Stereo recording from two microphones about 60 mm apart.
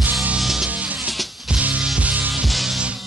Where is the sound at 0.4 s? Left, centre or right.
Centre.